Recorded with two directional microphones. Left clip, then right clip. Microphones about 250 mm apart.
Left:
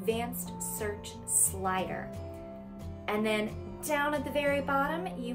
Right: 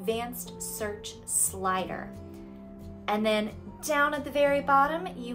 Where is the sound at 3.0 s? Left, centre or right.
Centre.